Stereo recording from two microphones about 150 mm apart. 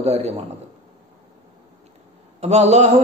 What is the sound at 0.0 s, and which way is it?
Speech, 45° right (ahead or behind).